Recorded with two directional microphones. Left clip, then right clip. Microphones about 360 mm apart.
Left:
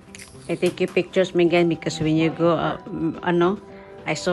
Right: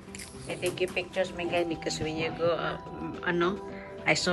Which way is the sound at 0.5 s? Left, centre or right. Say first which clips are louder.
Left 8 dB; centre.